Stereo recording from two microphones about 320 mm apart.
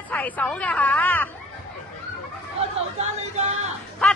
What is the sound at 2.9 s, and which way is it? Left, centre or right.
Music, right.